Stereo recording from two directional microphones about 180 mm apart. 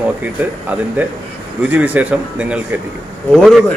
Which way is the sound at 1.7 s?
10° right (ahead or behind).